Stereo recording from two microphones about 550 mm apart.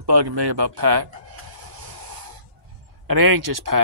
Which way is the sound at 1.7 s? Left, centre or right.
Right.